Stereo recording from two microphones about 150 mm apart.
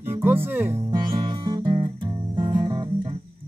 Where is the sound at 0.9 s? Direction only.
30° right (ahead or behind).